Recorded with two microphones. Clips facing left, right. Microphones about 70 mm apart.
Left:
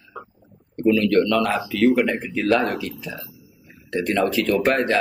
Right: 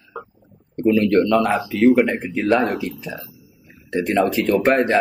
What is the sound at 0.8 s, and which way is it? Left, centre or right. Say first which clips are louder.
Speech: right 2 dB; right.